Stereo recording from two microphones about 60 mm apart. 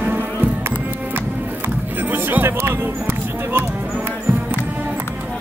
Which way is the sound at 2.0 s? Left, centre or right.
Right.